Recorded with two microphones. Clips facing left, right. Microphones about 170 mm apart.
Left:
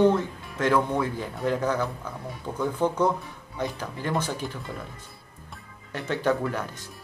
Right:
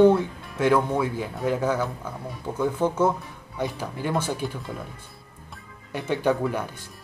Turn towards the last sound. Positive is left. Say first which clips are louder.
# right 2 dB
turn(degrees=-10)  # may be behind; listen again after turning